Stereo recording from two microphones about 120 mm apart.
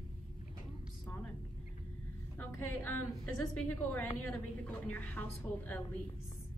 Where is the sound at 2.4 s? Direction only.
15° left (ahead or behind).